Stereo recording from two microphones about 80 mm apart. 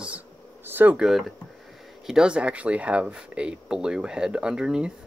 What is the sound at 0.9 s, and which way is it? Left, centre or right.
Speech, centre.